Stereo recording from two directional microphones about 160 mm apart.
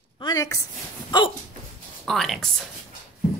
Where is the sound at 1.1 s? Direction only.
30° left (ahead or behind).